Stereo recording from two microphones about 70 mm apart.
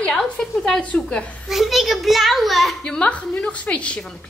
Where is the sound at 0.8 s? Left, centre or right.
Centre.